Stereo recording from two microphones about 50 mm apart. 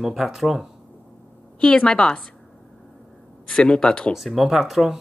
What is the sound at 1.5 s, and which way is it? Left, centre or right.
Speech, centre.